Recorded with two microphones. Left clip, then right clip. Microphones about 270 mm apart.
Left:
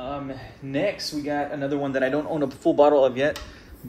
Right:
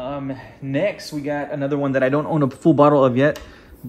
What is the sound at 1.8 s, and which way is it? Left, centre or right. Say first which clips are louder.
Speech: right 6 dB; centre.